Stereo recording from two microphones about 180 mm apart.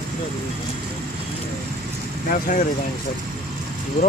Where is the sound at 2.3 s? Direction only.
50° left (ahead or behind).